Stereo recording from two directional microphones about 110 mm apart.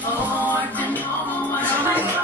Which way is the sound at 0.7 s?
15° left (ahead or behind).